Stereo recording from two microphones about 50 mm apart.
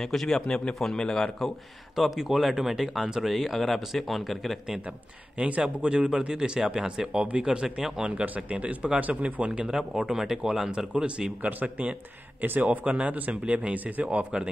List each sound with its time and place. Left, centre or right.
0.0 s a man's voice: centre
2.0 s speech: centre
5.4 s speech: right
8.5 s speech: right
9.7 s speech: centre
10.9 s speech: right
12.4 s a man's voice: right
12.6 s speech: right